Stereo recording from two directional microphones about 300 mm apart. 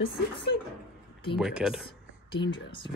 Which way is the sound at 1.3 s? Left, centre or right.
Centre.